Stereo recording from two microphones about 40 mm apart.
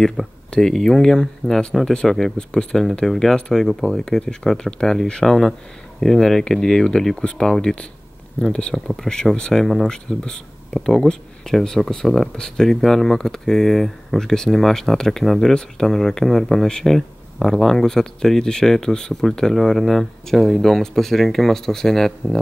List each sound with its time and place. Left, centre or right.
0.2 s speech: centre
2.3 s speech: centre
3.1 s speech: centre
5.2 s speech: centre
8.7 s speech: centre